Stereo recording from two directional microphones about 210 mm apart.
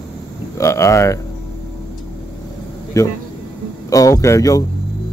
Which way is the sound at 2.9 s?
15° left (ahead or behind).